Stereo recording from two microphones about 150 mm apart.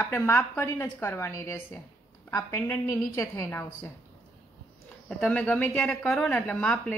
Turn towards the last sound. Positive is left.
turn(degrees=5)  # may be behind; listen again after turning